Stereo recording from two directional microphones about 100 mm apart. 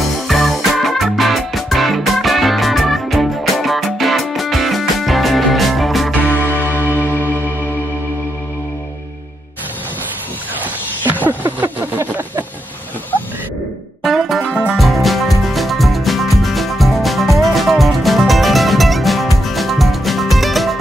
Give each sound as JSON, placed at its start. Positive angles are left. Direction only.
{"t": 0.0, "sound": "music", "side_deg": 0}
{"t": 6.3, "sound": "music", "side_deg": 20}
{"t": 11.2, "sound": "a sound", "side_deg": -20}
{"t": 14.0, "sound": "music", "side_deg": 0}